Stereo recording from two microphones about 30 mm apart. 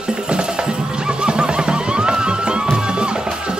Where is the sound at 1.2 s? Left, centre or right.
Right.